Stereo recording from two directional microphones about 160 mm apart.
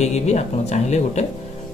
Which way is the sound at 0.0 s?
45° left (ahead or behind).